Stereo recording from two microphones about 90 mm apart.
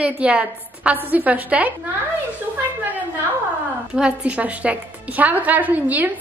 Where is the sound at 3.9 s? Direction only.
10° right (ahead or behind).